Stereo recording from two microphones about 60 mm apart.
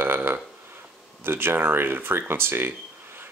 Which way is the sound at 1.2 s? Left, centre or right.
Right.